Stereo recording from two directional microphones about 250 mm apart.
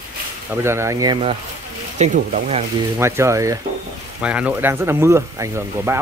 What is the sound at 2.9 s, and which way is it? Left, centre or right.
Speech, centre.